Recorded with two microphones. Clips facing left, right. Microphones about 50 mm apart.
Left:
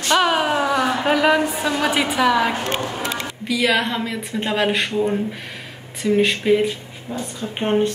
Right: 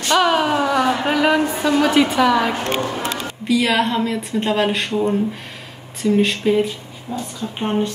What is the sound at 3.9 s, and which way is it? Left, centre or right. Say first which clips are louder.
Speech: right 4 dB; centre.